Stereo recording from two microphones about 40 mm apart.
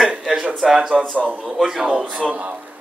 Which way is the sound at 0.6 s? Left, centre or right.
Centre.